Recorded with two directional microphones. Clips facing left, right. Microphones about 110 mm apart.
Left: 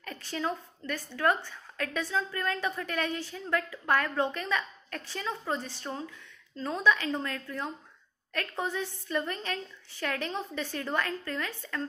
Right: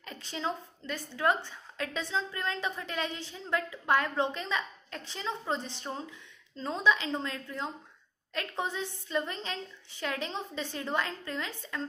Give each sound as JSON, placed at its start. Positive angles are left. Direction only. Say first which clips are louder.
{"t": 0.0, "sound": "a woman's voice", "louder": "left 2 dB", "side_deg": -20}